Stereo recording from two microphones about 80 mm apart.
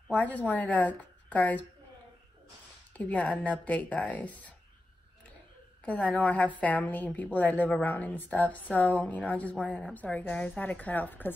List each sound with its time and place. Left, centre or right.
0.1 s a woman's voice: centre
2.9 s a woman's voice: centre
5.9 s a woman's voice: centre